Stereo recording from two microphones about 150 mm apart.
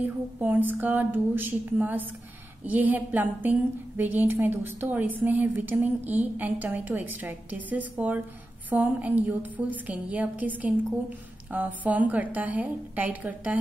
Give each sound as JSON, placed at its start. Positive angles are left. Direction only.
{"t": 0.4, "sound": "a woman's voice", "side_deg": -10}